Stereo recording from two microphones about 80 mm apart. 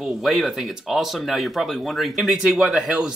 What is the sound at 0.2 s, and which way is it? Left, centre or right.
Speech, centre.